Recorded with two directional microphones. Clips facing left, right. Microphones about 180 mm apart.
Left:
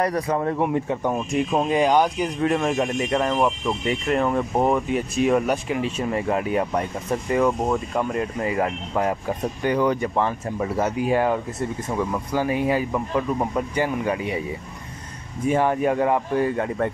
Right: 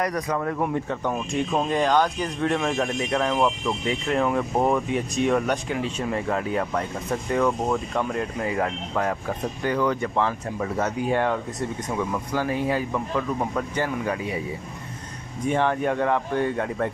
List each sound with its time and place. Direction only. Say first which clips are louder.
0.0 s speech: left 3 dB; 30° left (ahead or behind)
0.8 s speech: left 3 dB; 15° left (ahead or behind)
15.4 s speech: left 3 dB; 5° left (ahead or behind)